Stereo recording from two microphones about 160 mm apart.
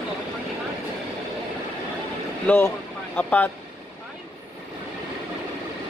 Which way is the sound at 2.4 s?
15° left (ahead or behind).